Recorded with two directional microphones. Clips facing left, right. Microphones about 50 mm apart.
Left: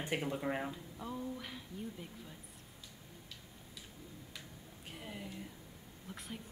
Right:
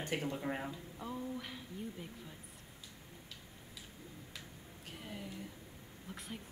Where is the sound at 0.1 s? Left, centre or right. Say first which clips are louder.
Left 2 dB; centre.